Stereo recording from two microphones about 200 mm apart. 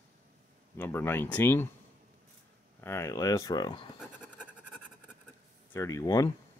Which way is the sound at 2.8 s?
15° left (ahead or behind).